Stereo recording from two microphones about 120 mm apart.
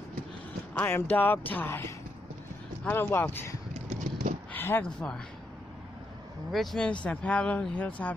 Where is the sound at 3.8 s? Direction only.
90° right.